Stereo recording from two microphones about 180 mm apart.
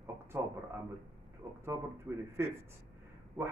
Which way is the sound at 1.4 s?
20° right (ahead or behind).